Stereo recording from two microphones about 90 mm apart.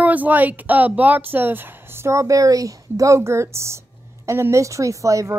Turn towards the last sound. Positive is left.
turn(degrees=-35)  # may be behind; listen again after turning